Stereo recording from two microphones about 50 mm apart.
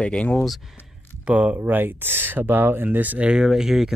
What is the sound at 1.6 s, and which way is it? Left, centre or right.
Speech, right.